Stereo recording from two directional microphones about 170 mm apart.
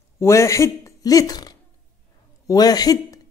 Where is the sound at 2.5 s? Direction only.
20° left (ahead or behind).